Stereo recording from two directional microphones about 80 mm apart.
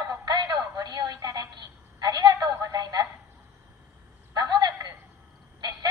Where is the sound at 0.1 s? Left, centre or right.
Right.